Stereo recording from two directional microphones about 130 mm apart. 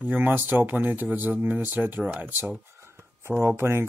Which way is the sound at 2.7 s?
20° right (ahead or behind).